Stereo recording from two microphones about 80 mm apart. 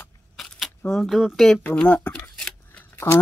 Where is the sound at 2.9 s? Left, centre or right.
Left.